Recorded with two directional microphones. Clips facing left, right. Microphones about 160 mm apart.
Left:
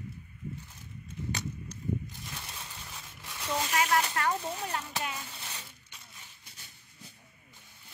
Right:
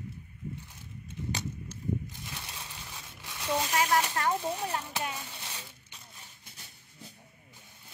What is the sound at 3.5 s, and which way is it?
Speech, 10° right (ahead or behind).